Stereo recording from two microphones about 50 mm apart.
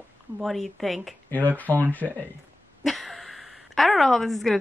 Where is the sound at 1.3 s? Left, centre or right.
Left.